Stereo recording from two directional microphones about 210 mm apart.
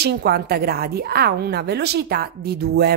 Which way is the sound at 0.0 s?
50° right (ahead or behind).